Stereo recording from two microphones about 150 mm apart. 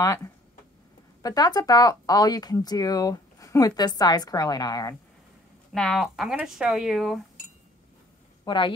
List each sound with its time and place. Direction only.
0.0 s speech: 20° left (ahead or behind)
5.7 s speech: centre (ahead or behind)
8.5 s a woman's voice: 30° left (ahead or behind)